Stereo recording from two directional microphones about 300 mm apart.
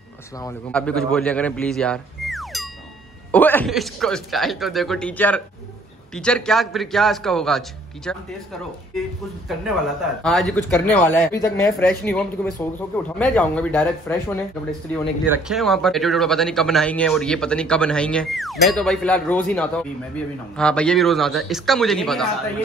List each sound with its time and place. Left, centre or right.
0.4 s speech: centre
10.2 s speech: centre
15.2 s speech: centre